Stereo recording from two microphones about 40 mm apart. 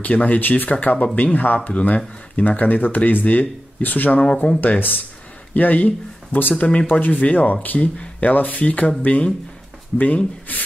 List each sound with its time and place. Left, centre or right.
0.0 s speech: left
4.2 s speech: left
4.6 s speech: left